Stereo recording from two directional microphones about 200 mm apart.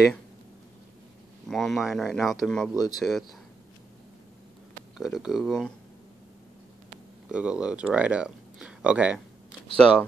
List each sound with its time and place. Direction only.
1.5 s speech: centre (ahead or behind)
2.7 s speech: 20° left (ahead or behind)
3.0 s speech: centre (ahead or behind)
4.9 s speech: centre (ahead or behind)
7.2 s speech: 5° right (ahead or behind)